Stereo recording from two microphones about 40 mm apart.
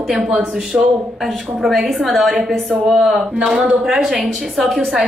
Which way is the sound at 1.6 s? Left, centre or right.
Centre.